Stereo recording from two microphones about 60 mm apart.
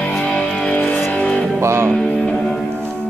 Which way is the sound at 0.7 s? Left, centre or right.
Left.